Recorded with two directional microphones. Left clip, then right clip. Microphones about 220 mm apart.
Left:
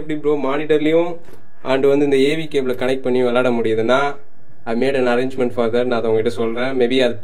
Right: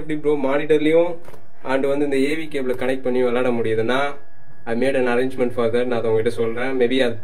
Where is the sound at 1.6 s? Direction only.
20° left (ahead or behind).